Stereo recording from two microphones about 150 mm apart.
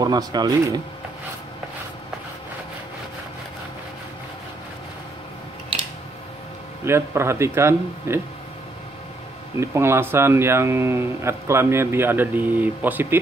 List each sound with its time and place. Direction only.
0.0 s speech: 25° right (ahead or behind)
6.8 s speech: 15° right (ahead or behind)
9.6 s speech: 15° right (ahead or behind)